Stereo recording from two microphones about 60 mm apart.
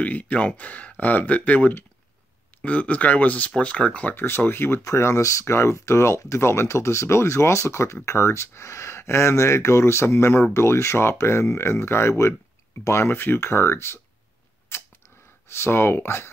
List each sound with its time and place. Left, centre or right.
0.0 s speech: left
4.1 s speech: left
4.8 s speech: left
14.7 s arrow: left
15.4 s speech: left